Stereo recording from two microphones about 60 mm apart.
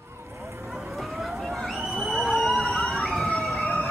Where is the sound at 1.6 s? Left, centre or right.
Centre.